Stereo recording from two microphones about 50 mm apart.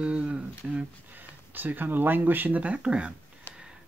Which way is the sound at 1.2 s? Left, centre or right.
Right.